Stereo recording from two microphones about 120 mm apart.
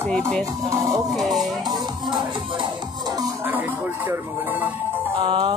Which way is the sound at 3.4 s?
15° right (ahead or behind).